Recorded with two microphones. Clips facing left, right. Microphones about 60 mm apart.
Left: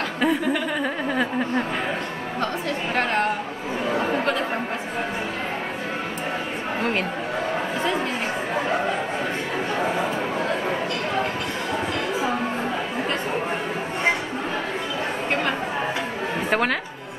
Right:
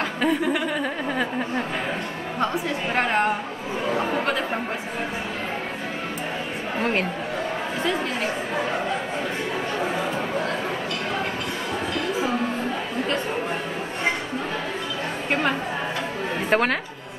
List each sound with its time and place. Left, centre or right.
0.2 s chuckle: centre
2.4 s a woman's voice: centre
6.8 s a woman's voice: centre
16.4 s a woman's voice: centre